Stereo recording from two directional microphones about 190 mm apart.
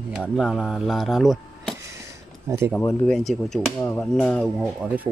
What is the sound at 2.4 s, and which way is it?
Speech, 15° right (ahead or behind).